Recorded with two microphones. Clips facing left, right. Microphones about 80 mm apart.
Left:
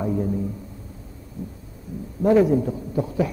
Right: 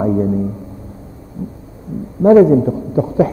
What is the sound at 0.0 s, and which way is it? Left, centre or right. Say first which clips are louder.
Speech: right 9 dB; right.